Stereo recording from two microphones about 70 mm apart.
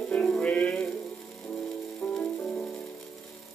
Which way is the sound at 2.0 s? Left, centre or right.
Left.